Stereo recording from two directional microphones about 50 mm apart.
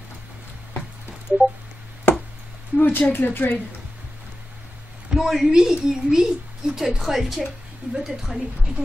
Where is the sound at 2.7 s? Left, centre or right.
Left.